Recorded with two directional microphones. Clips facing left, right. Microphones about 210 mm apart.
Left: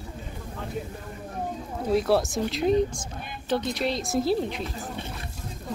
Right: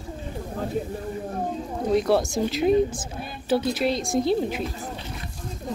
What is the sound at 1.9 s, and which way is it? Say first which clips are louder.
A woman's voice: right 1 dB; centre (ahead or behind).